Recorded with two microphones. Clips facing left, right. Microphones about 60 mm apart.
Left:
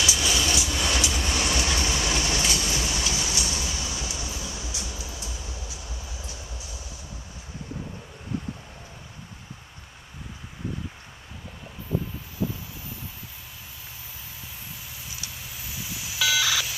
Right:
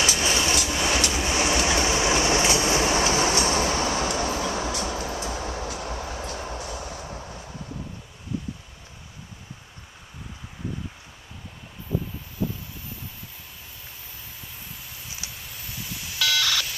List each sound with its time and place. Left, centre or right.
0.0 s vehicle: right
1.1 s train: right
15.3 s telephone dialing: centre